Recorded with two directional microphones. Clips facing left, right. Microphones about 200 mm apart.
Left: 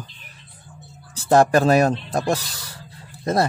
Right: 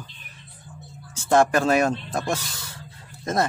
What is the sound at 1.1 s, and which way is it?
Speech, 35° left (ahead or behind).